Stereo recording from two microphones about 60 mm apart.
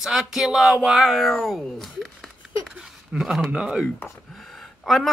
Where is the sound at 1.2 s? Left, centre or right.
Centre.